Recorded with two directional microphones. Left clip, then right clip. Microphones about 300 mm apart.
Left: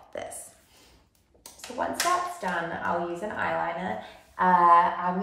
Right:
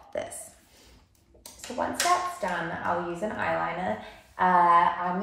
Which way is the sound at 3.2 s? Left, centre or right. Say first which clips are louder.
Right 2 dB; centre.